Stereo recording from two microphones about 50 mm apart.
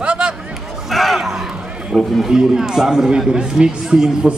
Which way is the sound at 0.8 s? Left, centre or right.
Centre.